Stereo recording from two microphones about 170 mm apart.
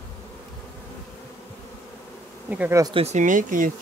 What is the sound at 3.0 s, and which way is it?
Speech, 45° right (ahead or behind).